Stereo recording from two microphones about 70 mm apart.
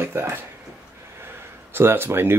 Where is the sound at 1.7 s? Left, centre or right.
Right.